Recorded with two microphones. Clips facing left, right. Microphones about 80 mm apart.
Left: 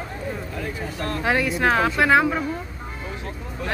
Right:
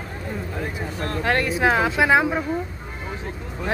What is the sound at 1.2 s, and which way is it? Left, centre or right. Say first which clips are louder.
Speech: even; centre.